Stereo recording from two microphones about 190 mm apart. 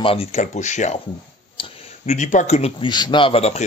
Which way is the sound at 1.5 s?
25° left (ahead or behind).